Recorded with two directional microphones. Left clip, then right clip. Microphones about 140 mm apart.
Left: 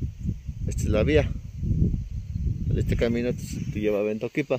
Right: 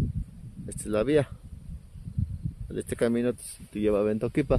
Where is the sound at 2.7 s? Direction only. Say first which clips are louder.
Left 1 dB; centre (ahead or behind); by 4.6 s 30° right (ahead or behind).